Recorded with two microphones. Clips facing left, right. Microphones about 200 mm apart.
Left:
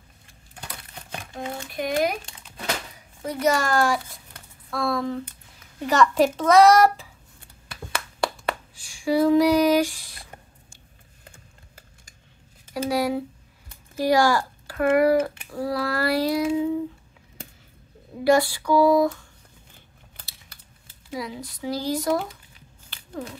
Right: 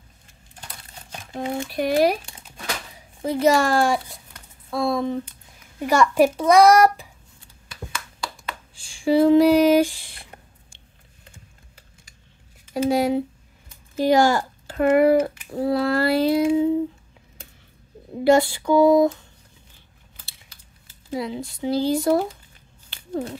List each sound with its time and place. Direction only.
1.3 s a child's voice: 25° right (ahead or behind)
7.3 s a sound: 60° left (ahead or behind)
8.7 s speech: 30° right (ahead or behind)
12.7 s speech: 25° right (ahead or behind)
18.2 s speech: 25° right (ahead or behind)
21.1 s speech: 25° right (ahead or behind)
22.8 s a sound: 30° right (ahead or behind)